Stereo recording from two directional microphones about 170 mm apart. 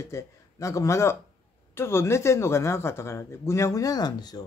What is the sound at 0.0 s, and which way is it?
Speech, 15° left (ahead or behind).